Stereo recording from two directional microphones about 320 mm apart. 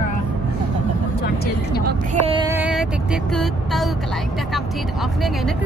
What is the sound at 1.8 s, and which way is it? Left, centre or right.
Vehicle, centre.